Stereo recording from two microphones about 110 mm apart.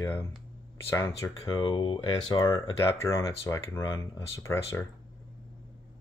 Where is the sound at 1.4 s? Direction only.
40° left (ahead or behind).